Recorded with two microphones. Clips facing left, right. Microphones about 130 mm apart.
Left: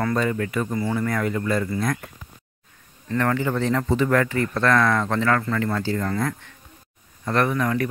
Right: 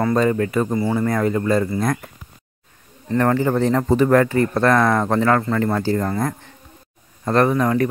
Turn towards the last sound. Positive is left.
turn(degrees=-35)  # may be behind; listen again after turning